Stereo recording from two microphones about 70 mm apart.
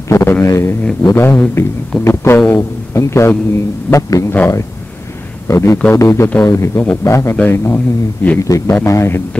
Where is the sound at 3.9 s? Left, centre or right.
Left.